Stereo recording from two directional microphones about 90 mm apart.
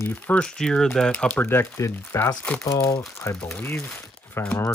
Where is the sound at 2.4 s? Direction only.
10° left (ahead or behind).